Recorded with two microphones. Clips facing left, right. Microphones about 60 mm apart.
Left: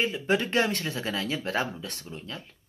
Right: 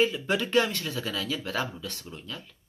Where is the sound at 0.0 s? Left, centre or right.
Left.